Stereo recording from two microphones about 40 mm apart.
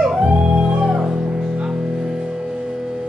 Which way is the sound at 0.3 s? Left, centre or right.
Right.